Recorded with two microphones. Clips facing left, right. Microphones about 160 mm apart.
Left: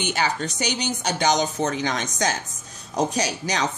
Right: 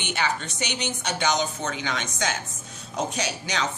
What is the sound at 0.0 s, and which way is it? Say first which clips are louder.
A woman's voice: left 3 dB; 40° left (ahead or behind).